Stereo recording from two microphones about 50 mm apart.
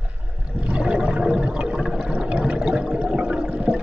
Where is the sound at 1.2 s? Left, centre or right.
Centre.